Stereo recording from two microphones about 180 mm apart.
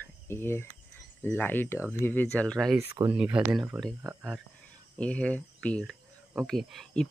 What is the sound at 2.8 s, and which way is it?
Speech, 10° right (ahead or behind).